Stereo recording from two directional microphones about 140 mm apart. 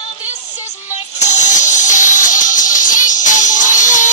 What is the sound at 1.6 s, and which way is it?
Music, 60° left (ahead or behind).